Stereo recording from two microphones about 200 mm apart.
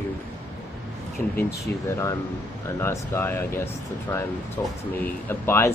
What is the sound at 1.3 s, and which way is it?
Speech, 15° left (ahead or behind).